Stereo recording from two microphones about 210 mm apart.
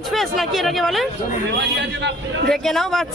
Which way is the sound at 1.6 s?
55° right (ahead or behind).